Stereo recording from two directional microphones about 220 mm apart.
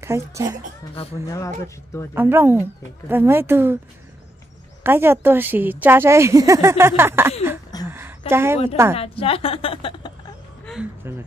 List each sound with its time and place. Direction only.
0.0 s a woman's voice: 15° right (ahead or behind)
0.9 s speech: 15° left (ahead or behind)
2.1 s a woman's voice: 10° right (ahead or behind)
4.8 s a woman's voice: 10° right (ahead or behind)
7.7 s a sound: 15° left (ahead or behind)
8.3 s a woman's voice: 10° right (ahead or behind)
8.9 s a woman's voice: 25° left (ahead or behind)
10.7 s speech: 5° right (ahead or behind)